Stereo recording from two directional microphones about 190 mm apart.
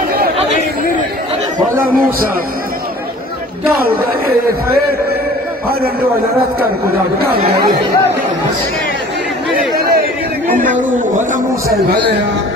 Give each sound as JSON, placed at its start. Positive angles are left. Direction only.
{"t": 2.0, "sound": "a man's voice", "side_deg": -50}
{"t": 7.2, "sound": "speech", "side_deg": -55}
{"t": 9.8, "sound": "chatter", "side_deg": -55}
{"t": 10.5, "sound": "a man's voice", "side_deg": -40}